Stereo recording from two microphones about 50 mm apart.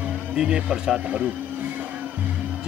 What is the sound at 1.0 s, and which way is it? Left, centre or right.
Speech, right.